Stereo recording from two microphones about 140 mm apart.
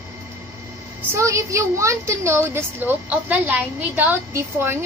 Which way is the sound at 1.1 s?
20° right (ahead or behind).